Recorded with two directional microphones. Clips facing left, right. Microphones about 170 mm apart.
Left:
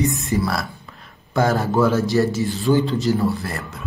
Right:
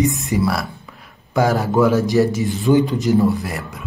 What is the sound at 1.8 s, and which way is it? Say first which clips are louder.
Speech: right 3 dB; 15° right (ahead or behind).